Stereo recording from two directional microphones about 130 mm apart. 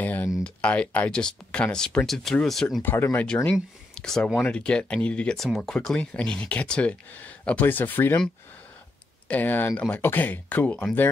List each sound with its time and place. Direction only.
0.0 s a sound: 15° left (ahead or behind)
0.4 s speech: 10° left (ahead or behind)
2.8 s speech: 15° left (ahead or behind)
3.9 s speech: 5° left (ahead or behind)
9.3 s speech: 15° left (ahead or behind)